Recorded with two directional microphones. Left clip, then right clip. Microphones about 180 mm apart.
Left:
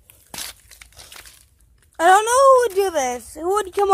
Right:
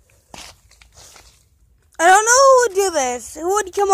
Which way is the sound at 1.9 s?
10° right (ahead or behind).